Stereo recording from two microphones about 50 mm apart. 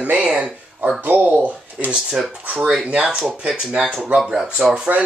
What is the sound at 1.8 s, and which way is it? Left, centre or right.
Speech, right.